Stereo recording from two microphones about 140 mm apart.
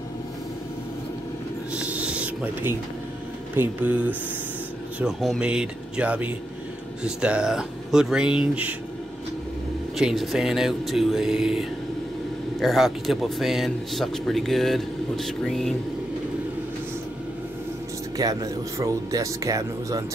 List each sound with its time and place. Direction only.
1.7 s a sound: 10° right (ahead or behind)
3.5 s a man's voice: 10° right (ahead or behind)
9.9 s a man's voice: centre (ahead or behind)
18.1 s speech: 25° right (ahead or behind)